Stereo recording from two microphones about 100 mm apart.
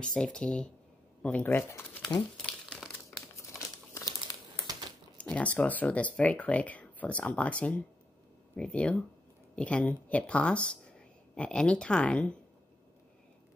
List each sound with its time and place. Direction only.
0.0 s speech: 5° left (ahead or behind); by 1.9 s 25° left (ahead or behind)
5.1 s speech: 15° left (ahead or behind)